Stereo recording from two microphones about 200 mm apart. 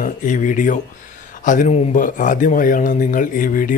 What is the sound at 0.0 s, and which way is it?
Speech, 40° left (ahead or behind).